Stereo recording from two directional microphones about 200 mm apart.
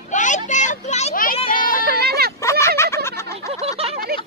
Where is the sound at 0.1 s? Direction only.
40° left (ahead or behind).